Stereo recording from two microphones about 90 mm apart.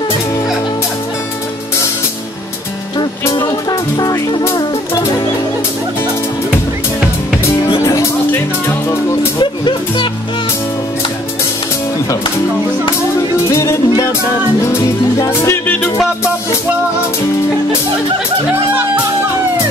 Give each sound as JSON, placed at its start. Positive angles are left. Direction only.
{"t": 4.5, "sound": "music", "side_deg": 45}
{"t": 7.8, "sound": "music", "side_deg": 30}
{"t": 9.4, "sound": "music", "side_deg": 60}
{"t": 13.5, "sound": "music", "side_deg": 35}
{"t": 15.6, "sound": "music", "side_deg": 20}